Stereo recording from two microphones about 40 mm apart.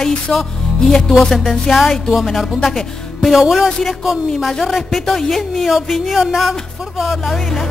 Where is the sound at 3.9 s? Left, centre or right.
Centre.